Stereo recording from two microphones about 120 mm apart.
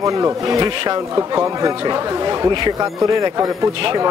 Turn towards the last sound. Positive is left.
turn(degrees=-30)  # may be behind; listen again after turning